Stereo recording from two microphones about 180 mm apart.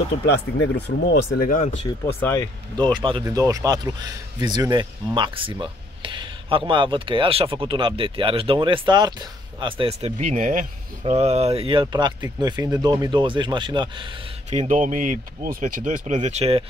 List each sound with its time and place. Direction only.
0.3 s speech: 75° left (ahead or behind)
1.4 s speech: 50° left (ahead or behind)
2.0 s speech: 15° left (ahead or behind)
2.8 s speech: 25° right (ahead or behind)
14.5 s speech: 40° right (ahead or behind)